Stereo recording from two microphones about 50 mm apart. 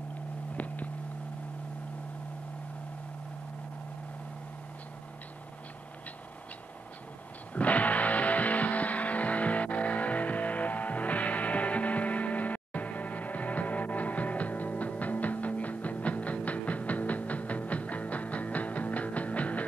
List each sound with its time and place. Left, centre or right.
7.5 s music: left